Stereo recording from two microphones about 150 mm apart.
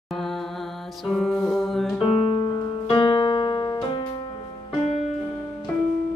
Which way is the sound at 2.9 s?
30° left (ahead or behind).